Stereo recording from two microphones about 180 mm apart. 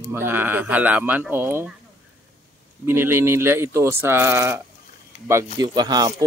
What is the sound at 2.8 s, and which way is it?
Speech, 15° right (ahead or behind).